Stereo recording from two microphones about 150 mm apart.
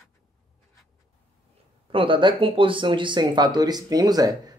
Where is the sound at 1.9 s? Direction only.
35° right (ahead or behind).